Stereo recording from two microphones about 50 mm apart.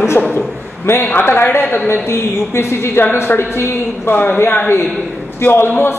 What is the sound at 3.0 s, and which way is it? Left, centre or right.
A woman's voice, left.